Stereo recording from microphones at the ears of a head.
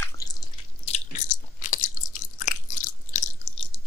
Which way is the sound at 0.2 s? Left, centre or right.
Left.